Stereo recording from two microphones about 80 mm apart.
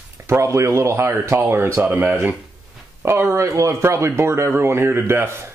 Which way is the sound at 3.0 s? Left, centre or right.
Right.